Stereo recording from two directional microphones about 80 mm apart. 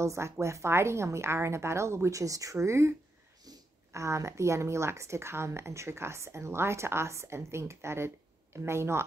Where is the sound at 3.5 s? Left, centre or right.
Right.